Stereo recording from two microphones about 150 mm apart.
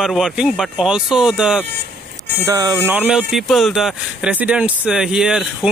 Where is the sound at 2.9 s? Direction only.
5° right (ahead or behind).